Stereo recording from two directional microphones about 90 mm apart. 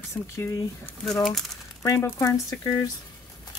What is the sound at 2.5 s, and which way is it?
Speech, 40° left (ahead or behind).